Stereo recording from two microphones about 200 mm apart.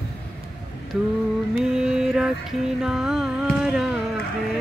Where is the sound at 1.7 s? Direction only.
5° right (ahead or behind).